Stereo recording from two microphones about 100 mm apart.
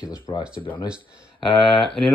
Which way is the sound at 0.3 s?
55° left (ahead or behind).